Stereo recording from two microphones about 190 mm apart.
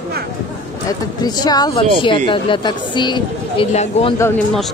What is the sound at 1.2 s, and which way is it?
Speech, 20° left (ahead or behind).